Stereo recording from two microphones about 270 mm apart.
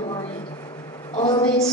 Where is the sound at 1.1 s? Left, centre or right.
Centre.